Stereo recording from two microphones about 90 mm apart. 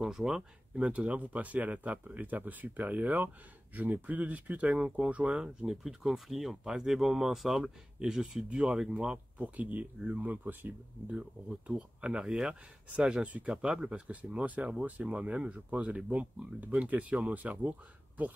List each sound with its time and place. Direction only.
0.0 s speech: 5° right (ahead or behind)
11.1 s speech: 10° right (ahead or behind)